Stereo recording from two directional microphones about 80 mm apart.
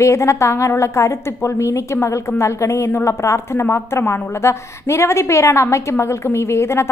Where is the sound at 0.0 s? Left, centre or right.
Left.